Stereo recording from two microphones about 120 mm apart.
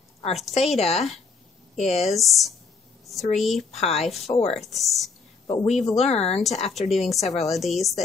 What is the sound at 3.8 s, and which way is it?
Speech, 60° left (ahead or behind).